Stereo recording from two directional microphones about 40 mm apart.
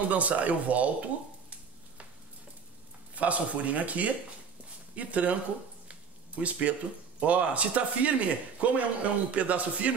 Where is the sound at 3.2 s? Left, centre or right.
Right.